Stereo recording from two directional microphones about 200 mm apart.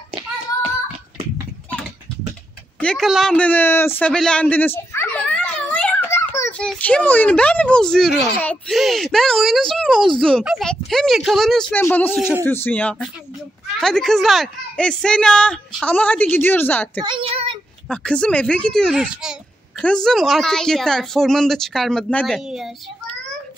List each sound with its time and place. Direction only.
2.8 s a sound: 5° left (ahead or behind)
6.7 s a child's voice: 5° left (ahead or behind)
17.0 s child singing: 25° right (ahead or behind)
17.8 s a woman's voice: 5° left (ahead or behind)